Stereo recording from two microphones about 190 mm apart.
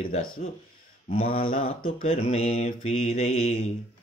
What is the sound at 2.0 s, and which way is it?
Speech, 30° left (ahead or behind).